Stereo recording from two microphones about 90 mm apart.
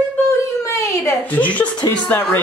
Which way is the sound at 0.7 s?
35° left (ahead or behind).